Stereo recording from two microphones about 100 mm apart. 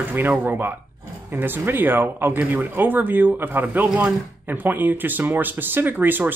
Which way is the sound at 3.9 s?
5° right (ahead or behind).